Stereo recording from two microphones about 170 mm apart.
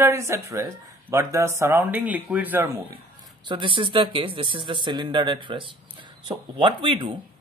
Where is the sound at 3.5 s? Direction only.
30° right (ahead or behind).